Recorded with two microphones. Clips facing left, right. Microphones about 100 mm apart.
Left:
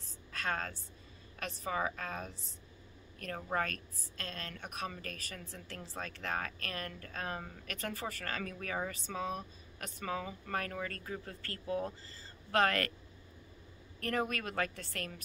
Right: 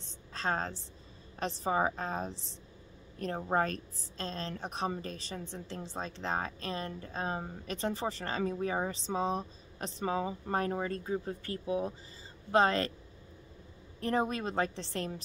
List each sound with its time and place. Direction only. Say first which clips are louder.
0.3 s a woman's voice: right 4 dB; 30° right (ahead or behind)
13.9 s a woman's voice: right 4 dB; 20° right (ahead or behind)